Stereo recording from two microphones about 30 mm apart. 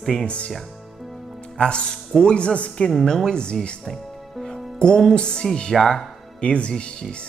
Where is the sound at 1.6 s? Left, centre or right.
Left.